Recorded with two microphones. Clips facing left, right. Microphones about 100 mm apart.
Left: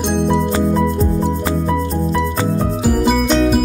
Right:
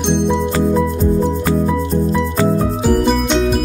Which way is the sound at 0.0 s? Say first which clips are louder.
Even; centre (ahead or behind).